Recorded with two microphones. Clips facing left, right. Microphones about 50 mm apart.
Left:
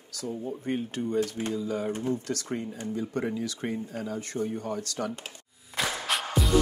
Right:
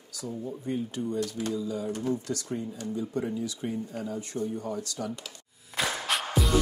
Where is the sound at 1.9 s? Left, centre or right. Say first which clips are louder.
Even; left.